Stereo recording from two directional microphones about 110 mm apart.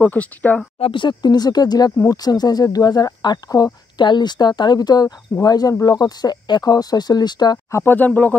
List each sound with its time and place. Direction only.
0.0 s speech: 15° left (ahead or behind)
0.7 s speech: 60° left (ahead or behind)
1.0 s speech: 40° left (ahead or behind)
7.7 s speech: 20° left (ahead or behind)